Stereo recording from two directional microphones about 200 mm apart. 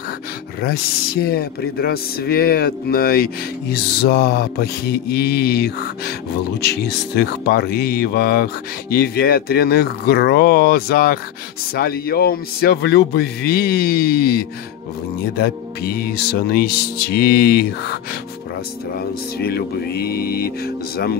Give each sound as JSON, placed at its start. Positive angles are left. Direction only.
{"t": 0.6, "sound": "speech", "side_deg": 50}
{"t": 18.9, "sound": "speech", "side_deg": 50}